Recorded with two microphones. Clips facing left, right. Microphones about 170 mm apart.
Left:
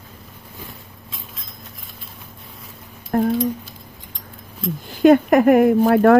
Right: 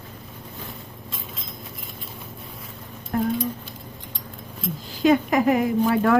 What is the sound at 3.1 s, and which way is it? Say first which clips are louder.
Speech: left 5 dB; 50° left (ahead or behind).